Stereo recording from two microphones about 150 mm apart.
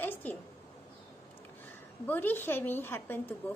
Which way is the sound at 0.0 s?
15° left (ahead or behind).